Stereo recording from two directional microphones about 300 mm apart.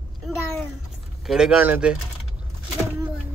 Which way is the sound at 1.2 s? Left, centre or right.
Centre.